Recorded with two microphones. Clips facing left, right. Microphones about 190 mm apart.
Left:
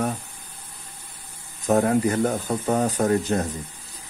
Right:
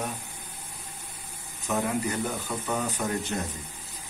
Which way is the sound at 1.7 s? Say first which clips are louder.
Left 8 dB; 55° left (ahead or behind).